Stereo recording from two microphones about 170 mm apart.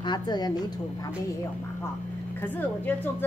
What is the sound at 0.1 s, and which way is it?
Speech, 25° left (ahead or behind).